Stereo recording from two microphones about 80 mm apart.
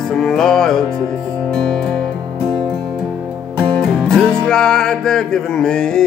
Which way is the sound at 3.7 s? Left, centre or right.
Centre.